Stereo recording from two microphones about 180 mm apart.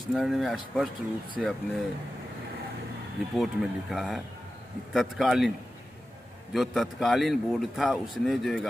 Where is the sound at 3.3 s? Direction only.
Centre (ahead or behind).